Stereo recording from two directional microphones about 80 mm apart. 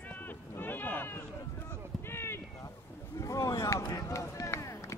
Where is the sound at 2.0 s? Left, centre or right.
Left.